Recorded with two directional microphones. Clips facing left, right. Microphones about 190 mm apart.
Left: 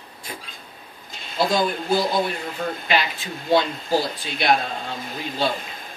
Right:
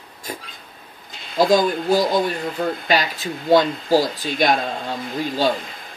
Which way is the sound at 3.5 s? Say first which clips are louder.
Right 4 dB; 45° right (ahead or behind).